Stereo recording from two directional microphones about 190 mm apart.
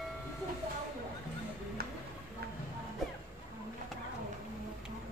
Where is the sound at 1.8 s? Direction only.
55° right (ahead or behind).